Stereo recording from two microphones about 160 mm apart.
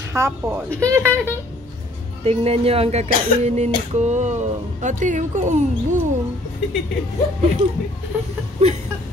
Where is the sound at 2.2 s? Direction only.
40° right (ahead or behind).